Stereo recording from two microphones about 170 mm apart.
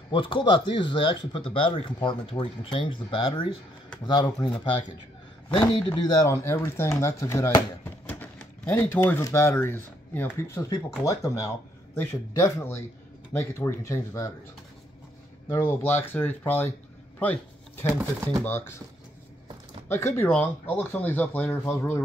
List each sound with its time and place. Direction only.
0.1 s speech: 30° left (ahead or behind)
5.5 s speech: 30° left (ahead or behind)
15.4 s speech: 15° left (ahead or behind)
17.8 s speech: 15° right (ahead or behind)
18.4 s speech: 15° left (ahead or behind)
19.9 s speech: 15° left (ahead or behind)